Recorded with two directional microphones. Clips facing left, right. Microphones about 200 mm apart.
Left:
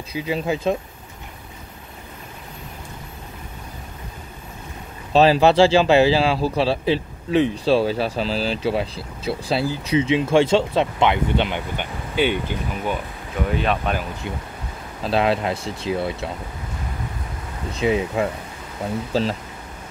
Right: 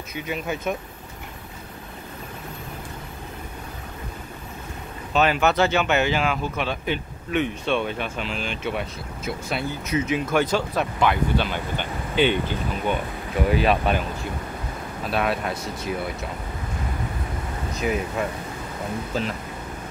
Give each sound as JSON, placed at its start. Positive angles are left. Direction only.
{"t": 0.1, "sound": "speech", "side_deg": 30}
{"t": 5.1, "sound": "speech", "side_deg": 30}
{"t": 13.5, "sound": "speech", "side_deg": -5}
{"t": 15.0, "sound": "speech", "side_deg": 25}
{"t": 17.7, "sound": "speech", "side_deg": 25}